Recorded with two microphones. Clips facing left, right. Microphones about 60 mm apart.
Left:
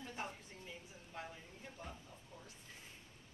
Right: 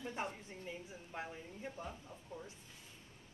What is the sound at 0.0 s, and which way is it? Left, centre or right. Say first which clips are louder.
Speech: right 4 dB; right.